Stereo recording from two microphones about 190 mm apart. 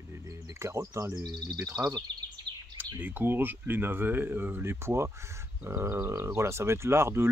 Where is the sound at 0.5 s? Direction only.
15° right (ahead or behind).